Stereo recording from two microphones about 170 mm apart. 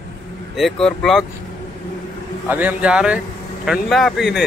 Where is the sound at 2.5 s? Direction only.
10° right (ahead or behind).